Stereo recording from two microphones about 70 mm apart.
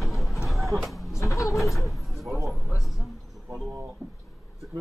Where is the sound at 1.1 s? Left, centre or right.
Left.